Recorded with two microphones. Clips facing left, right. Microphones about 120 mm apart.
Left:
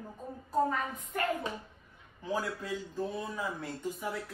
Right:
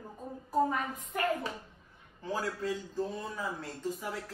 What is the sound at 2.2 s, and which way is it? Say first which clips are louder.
Speech: right 1 dB; 15° left (ahead or behind).